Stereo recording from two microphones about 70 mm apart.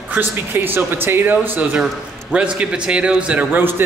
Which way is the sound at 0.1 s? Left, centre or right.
Right.